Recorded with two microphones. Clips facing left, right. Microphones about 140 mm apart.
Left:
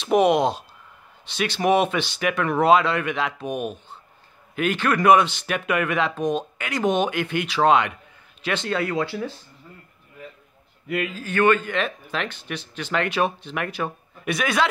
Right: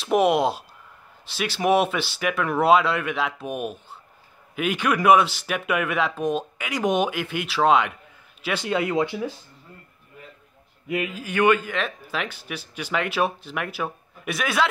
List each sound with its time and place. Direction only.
0.0 s a man's voice: 5° right (ahead or behind)
8.7 s speech: 20° right (ahead or behind)
10.9 s a man's voice: 15° right (ahead or behind)